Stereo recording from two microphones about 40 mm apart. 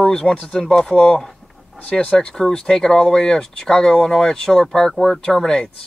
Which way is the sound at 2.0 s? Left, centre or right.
Left.